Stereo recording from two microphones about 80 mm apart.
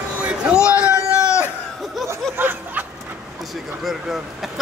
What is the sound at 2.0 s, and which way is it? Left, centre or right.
Snicker, right.